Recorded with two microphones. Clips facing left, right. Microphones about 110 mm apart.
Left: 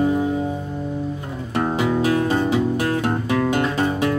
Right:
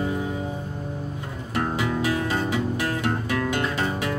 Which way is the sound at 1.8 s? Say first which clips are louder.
Left 8 dB; 25° left (ahead or behind).